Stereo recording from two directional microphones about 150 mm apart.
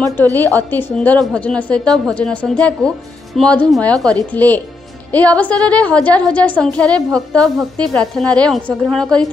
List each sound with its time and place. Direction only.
0.6 s a woman's voice: 10° left (ahead or behind)